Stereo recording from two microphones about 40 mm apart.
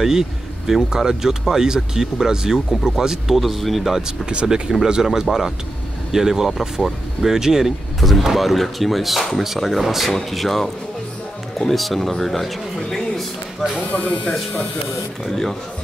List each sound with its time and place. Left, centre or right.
0.0 s speech: centre
4.3 s speech: right
8.0 s speech: centre
13.9 s speech: left
15.2 s speech: centre